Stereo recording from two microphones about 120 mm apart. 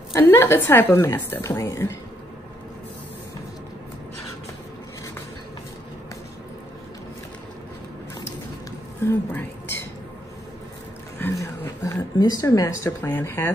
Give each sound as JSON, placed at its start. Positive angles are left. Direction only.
{"t": 0.1, "sound": "a woman's voice", "side_deg": 20}
{"t": 9.0, "sound": "a woman's voice", "side_deg": 15}
{"t": 11.1, "sound": "a sound", "side_deg": 20}
{"t": 12.4, "sound": "a woman's voice", "side_deg": 25}